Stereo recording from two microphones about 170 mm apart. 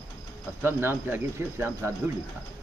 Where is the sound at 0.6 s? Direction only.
15° right (ahead or behind).